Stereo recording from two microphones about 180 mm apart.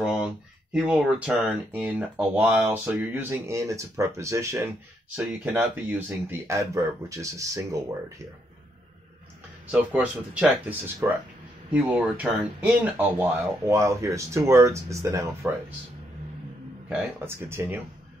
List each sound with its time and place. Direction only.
0.7 s speech: 5° right (ahead or behind)
9.7 s speech: 10° right (ahead or behind)
16.9 s speech: 15° right (ahead or behind)